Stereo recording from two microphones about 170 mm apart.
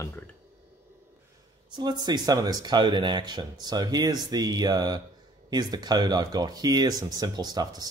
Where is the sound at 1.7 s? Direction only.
25° right (ahead or behind).